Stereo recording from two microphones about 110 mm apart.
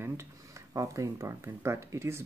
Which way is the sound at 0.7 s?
30° right (ahead or behind).